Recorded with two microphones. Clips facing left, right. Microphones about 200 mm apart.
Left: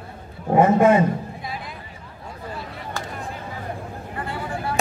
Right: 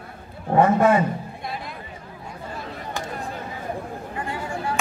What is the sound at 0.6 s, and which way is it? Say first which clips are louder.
Speech: left 2 dB; 20° left (ahead or behind).